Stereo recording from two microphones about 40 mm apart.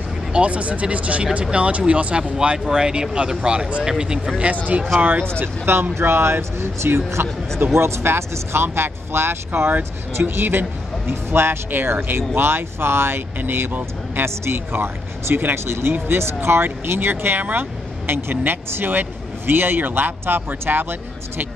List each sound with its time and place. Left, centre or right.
0.3 s speech: right
2.4 s speech: right
4.4 s speech: right
5.4 s speech: right
7.2 s speech: right
7.7 s speech: right
10.2 s speech: right
11.1 s speech: right
13.4 s speech: right
14.1 s a woman's voice: right
14.8 s speech: right
17.1 s speech: right
18.0 s speech: right